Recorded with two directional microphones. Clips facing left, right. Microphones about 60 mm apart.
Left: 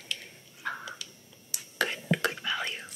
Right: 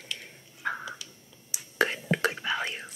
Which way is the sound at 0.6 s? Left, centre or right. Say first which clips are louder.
Right 3 dB; right.